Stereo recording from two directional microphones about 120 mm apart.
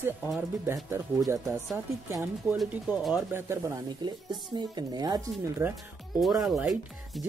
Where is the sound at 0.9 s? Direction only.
25° right (ahead or behind).